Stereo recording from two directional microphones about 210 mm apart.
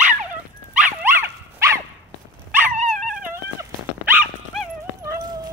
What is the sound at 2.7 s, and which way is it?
Dog, 35° right (ahead or behind).